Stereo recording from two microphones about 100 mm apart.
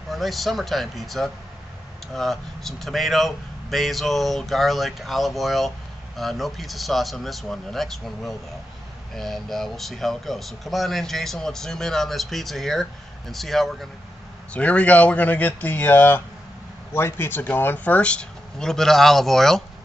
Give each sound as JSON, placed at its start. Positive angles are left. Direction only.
{"t": 0.1, "sound": "speech", "side_deg": 0}
{"t": 14.5, "sound": "speech", "side_deg": 15}